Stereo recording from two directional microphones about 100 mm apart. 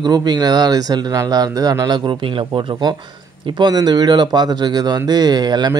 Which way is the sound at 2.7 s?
45° right (ahead or behind).